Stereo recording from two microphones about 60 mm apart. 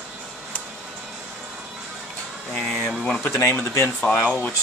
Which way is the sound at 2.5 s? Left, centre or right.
Centre.